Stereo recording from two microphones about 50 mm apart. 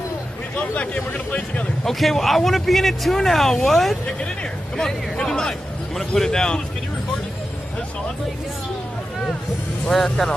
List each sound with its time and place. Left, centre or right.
0.6 s speech: left
1.9 s speech: centre
9.8 s speech: centre